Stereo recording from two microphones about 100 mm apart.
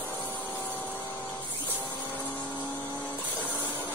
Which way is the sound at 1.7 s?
20° left (ahead or behind).